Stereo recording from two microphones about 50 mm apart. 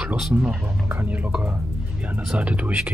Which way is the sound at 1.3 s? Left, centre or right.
Centre.